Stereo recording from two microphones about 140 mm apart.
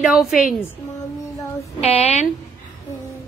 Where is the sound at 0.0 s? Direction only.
5° right (ahead or behind).